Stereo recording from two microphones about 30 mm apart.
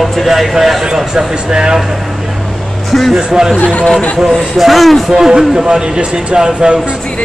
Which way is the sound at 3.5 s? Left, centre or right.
Left.